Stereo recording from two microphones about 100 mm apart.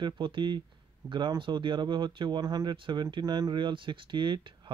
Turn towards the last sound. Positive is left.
turn(degrees=-55)  # may be behind; listen again after turning